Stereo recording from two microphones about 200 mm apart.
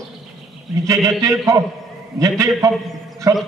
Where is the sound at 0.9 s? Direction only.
15° right (ahead or behind).